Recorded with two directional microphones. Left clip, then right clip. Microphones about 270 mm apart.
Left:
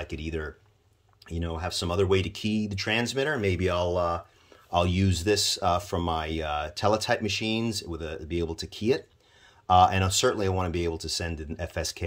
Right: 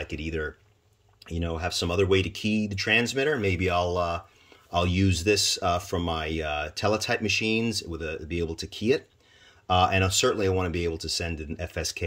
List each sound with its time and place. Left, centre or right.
0.0 s speech: centre